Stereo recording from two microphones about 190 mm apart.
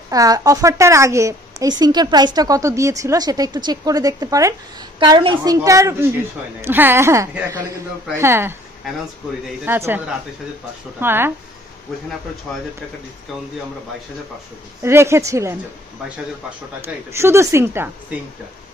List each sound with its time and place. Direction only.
0.1 s a woman's voice: 20° right (ahead or behind)
9.7 s a woman's voice: 10° right (ahead or behind)
11.9 s speech: centre (ahead or behind)
14.8 s a woman's voice: 15° right (ahead or behind)
16.8 s a woman's voice: 15° right (ahead or behind)